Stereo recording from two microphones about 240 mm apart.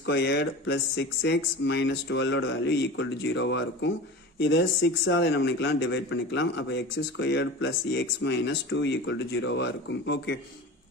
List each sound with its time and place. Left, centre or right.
0.0 s a man's voice: left